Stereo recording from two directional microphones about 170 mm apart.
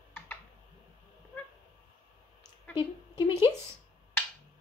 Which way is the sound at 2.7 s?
30° left (ahead or behind).